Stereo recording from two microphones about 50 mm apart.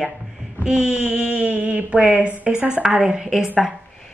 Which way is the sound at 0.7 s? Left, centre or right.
Centre.